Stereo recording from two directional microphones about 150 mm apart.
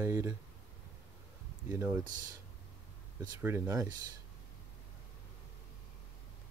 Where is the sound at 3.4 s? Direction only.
15° right (ahead or behind).